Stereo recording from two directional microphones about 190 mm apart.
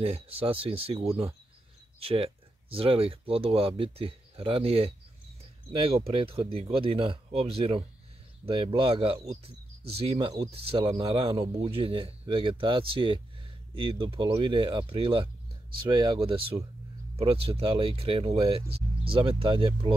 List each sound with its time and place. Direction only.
0.0 s speech: 30° right (ahead or behind)